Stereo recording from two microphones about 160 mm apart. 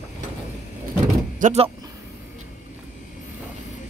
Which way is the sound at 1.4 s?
45° right (ahead or behind).